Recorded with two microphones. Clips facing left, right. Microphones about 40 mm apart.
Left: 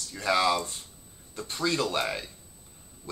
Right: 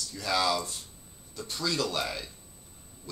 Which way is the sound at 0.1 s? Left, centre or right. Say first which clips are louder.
Left 3 dB; left.